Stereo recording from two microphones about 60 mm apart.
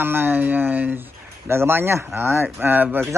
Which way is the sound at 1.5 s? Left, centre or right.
Right.